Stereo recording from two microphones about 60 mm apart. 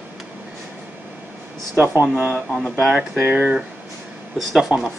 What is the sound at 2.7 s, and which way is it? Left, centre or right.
Speech, centre.